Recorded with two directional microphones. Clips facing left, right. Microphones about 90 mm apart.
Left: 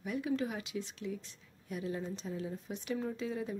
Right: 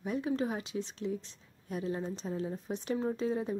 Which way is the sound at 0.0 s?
30° right (ahead or behind).